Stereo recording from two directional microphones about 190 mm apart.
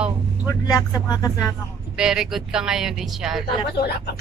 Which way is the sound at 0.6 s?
20° left (ahead or behind).